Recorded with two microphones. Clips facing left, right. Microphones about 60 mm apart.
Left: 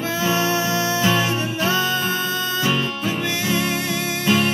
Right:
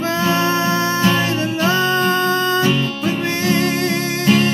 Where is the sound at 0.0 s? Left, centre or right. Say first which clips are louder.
Right 4 dB; right.